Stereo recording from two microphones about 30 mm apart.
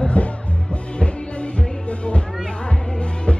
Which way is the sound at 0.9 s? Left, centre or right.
Left.